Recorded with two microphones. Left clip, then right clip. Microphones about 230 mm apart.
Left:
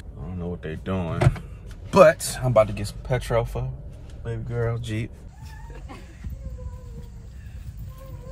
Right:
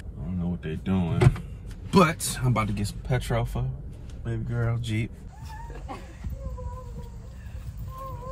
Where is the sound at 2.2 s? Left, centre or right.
Centre.